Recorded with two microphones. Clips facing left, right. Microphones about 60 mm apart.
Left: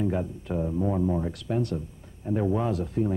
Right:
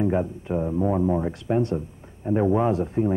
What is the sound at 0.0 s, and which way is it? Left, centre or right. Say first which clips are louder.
Speech: right 5 dB; right.